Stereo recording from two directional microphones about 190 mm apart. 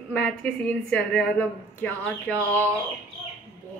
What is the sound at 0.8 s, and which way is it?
A woman's voice, 5° left (ahead or behind).